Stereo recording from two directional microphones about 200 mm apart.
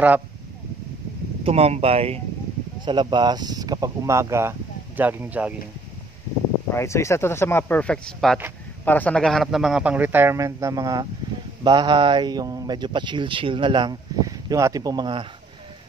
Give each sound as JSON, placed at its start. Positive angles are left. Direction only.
{"t": 1.4, "sound": "speech", "side_deg": -30}
{"t": 6.7, "sound": "a man's voice", "side_deg": 15}